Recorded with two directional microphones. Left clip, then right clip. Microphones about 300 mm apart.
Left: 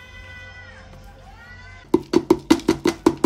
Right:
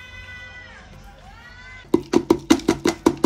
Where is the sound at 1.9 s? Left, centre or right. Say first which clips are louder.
Left 1 dB; centre.